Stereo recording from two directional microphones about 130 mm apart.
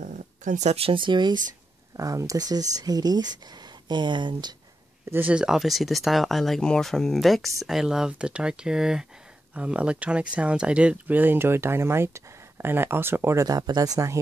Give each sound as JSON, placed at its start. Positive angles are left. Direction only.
{"t": 0.0, "sound": "speech", "side_deg": -75}
{"t": 2.0, "sound": "speech", "side_deg": -25}
{"t": 5.1, "sound": "speech", "side_deg": -10}